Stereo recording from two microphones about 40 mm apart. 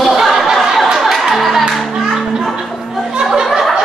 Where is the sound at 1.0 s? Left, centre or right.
Centre.